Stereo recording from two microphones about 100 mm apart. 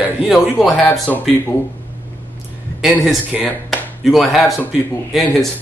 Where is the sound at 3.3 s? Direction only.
5° right (ahead or behind).